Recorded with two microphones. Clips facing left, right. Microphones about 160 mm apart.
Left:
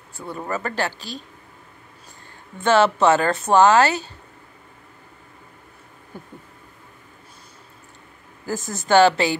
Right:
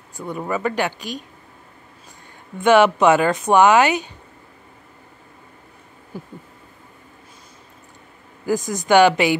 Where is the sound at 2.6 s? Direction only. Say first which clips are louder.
Right 3 dB; 15° right (ahead or behind).